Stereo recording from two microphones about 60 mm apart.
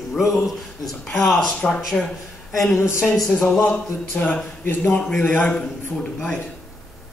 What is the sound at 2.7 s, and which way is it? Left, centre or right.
Speech, left.